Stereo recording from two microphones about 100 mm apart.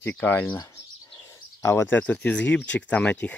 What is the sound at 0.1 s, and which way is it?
Speech, 20° left (ahead or behind).